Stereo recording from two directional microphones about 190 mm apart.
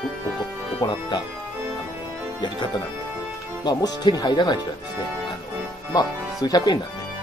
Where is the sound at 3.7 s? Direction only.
20° left (ahead or behind).